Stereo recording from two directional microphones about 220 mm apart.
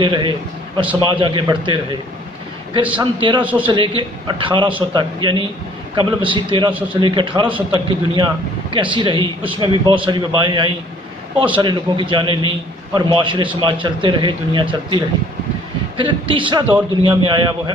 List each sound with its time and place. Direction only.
0.0 s a man's voice: 20° right (ahead or behind)
3.0 s a man's voice: 20° right (ahead or behind)
16.0 s a man's voice: 20° right (ahead or behind)